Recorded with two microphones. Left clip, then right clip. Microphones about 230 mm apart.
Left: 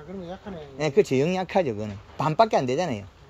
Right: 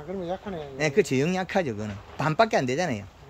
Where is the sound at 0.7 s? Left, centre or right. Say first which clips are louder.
Left 2 dB; centre.